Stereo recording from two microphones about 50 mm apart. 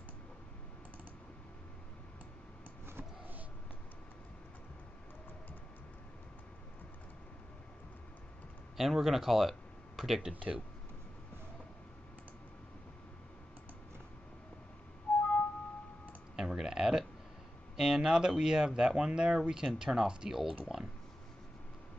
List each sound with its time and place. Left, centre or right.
8.7 s speech: centre
10.3 s speech: right
15.1 s music: left
16.3 s clicking: centre
17.7 s speech: centre